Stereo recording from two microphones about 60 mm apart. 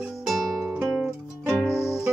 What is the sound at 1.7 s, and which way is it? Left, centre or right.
Music, left.